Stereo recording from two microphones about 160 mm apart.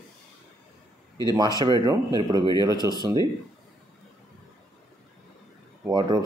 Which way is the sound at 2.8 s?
25° left (ahead or behind).